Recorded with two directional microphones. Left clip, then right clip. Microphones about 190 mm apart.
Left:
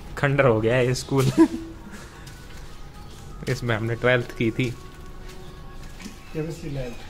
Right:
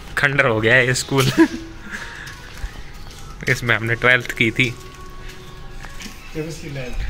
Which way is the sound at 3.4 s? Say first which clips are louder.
Right 8 dB; 5° left (ahead or behind).